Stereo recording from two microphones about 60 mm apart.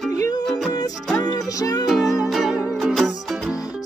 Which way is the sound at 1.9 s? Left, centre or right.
Centre.